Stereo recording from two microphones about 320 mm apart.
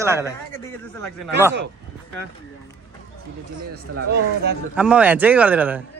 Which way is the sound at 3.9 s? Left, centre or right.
Right.